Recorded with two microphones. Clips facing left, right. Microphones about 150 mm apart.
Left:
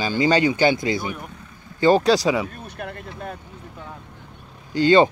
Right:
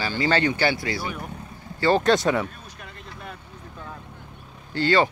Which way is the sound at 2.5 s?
60° left (ahead or behind).